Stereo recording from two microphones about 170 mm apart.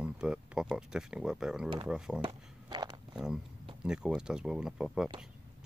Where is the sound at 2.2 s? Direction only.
30° right (ahead or behind).